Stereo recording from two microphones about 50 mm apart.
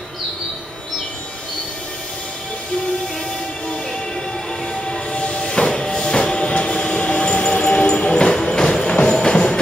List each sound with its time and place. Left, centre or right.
4.8 s train: centre
8.9 s music: centre